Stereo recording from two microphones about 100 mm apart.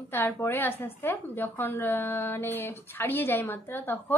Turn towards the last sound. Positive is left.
turn(degrees=20)  # may be behind; listen again after turning